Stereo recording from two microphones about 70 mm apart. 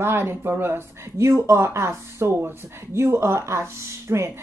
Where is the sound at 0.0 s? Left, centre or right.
Right.